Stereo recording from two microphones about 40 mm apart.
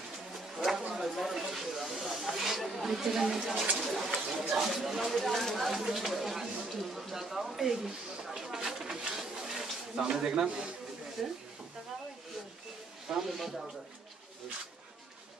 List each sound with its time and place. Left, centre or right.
0.3 s a sound: centre
1.1 s snake: centre
3.8 s speech: centre
5.7 s speech: centre
9.0 s a sound: centre
10.1 s a man's voice: centre
11.2 s speech: centre
13.1 s speech: centre